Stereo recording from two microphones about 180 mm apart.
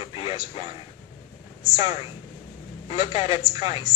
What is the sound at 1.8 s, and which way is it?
A woman's voice, 35° left (ahead or behind).